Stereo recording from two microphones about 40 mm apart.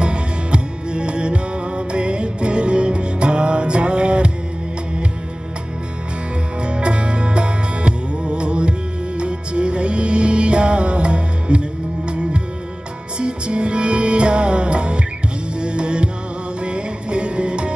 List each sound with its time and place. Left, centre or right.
0.0 s music: right
6.6 s music: right